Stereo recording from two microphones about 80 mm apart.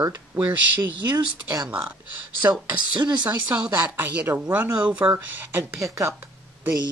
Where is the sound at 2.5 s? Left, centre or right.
Right.